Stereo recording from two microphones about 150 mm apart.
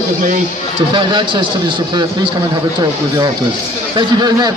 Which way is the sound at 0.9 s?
35° right (ahead or behind).